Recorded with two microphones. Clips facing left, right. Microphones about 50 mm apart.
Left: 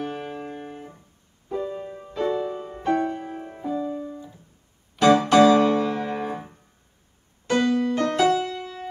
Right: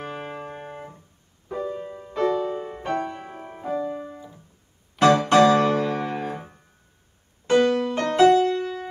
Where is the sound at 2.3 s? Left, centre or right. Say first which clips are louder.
Right 2 dB; right.